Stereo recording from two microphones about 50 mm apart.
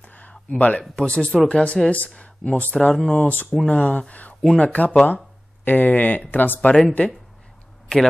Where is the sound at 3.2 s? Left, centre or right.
Left.